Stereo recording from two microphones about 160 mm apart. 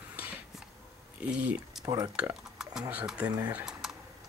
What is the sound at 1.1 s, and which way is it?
Speech, 5° right (ahead or behind).